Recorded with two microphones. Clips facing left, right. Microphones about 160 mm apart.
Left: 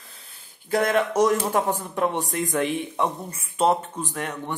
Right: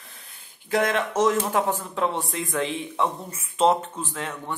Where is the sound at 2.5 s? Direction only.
15° left (ahead or behind).